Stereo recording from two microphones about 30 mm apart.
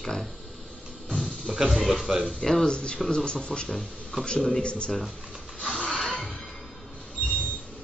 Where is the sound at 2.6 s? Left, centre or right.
Left.